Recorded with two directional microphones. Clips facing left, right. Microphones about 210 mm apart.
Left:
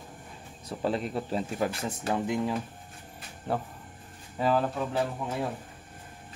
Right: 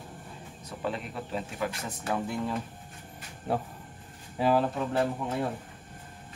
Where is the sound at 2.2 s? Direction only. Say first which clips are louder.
Left 3 dB; 15° left (ahead or behind).